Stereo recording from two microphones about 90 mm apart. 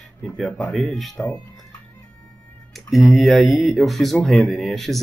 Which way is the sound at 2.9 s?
Centre (ahead or behind).